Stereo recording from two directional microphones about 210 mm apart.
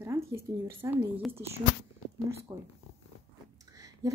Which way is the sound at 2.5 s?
15° right (ahead or behind).